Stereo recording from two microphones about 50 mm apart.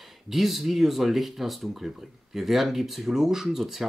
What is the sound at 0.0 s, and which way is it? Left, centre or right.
Speech, centre.